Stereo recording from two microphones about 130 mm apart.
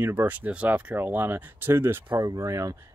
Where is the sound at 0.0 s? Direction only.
15° right (ahead or behind).